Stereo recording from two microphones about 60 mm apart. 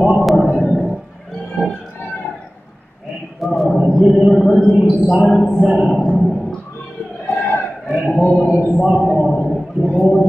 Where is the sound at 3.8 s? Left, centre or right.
Centre.